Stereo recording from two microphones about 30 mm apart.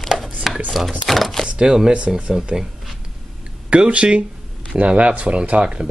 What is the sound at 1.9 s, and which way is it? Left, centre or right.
Speech, right.